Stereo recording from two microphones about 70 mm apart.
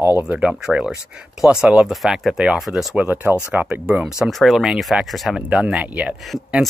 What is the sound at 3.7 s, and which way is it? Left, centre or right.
Speech, centre.